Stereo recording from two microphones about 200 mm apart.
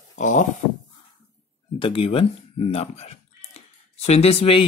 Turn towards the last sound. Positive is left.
turn(degrees=30)  # may be behind; listen again after turning